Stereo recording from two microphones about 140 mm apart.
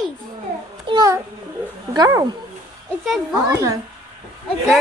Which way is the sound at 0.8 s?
25° right (ahead or behind).